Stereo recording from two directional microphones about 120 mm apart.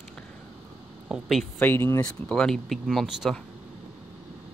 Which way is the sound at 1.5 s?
15° left (ahead or behind).